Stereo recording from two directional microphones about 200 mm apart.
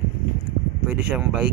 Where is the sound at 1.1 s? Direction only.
5° right (ahead or behind).